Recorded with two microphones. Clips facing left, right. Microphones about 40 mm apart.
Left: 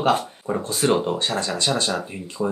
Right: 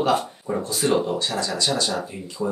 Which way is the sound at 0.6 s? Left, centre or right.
Left.